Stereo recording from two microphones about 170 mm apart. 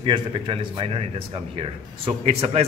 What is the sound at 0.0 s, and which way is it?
A man's voice, 30° right (ahead or behind).